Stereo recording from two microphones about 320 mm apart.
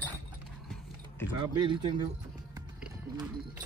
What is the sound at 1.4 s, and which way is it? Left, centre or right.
Speech, centre.